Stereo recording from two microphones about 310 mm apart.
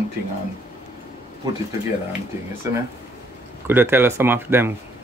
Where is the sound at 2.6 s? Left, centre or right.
Centre.